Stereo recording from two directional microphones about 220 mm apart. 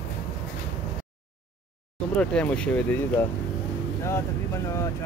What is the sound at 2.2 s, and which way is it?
Speech, 5° left (ahead or behind).